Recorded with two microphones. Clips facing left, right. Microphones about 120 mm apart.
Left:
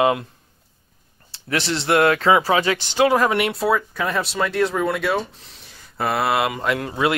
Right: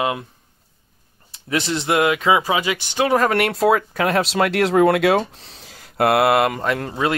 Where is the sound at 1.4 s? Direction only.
20° right (ahead or behind).